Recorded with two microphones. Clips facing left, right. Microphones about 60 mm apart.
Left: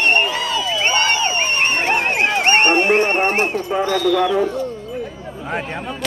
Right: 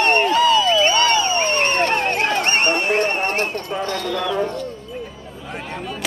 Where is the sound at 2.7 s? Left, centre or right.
Left.